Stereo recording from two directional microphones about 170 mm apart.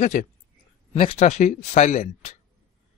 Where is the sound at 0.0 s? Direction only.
45° left (ahead or behind).